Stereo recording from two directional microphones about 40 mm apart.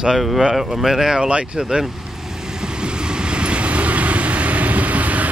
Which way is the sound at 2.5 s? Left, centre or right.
Right.